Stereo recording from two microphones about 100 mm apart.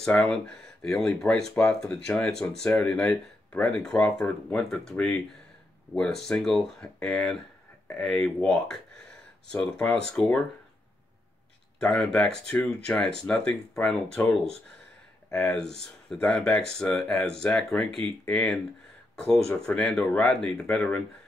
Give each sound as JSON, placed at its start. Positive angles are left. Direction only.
{"t": 0.0, "sound": "speech", "side_deg": 10}
{"t": 11.8, "sound": "speech", "side_deg": 10}
{"t": 15.3, "sound": "speech", "side_deg": 5}